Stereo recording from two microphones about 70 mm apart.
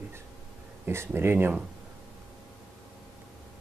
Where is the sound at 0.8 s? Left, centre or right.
Right.